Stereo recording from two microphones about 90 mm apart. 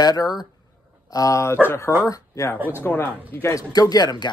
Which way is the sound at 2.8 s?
25° left (ahead or behind).